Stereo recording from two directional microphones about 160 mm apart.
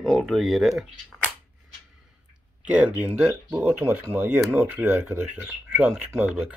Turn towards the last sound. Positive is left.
turn(degrees=-10)  # may be behind; listen again after turning